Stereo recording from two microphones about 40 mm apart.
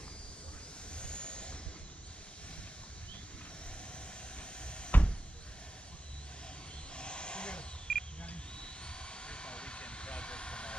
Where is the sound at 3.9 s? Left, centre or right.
Left.